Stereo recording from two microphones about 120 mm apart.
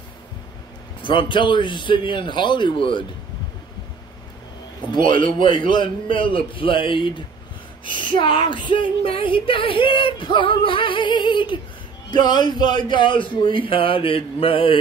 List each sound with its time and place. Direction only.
1.0 s female singing: 45° left (ahead or behind)
4.9 s a man's voice: 45° left (ahead or behind)
5.7 s female singing: 45° left (ahead or behind)
7.8 s speech: 40° left (ahead or behind)
8.2 s female singing: 45° left (ahead or behind)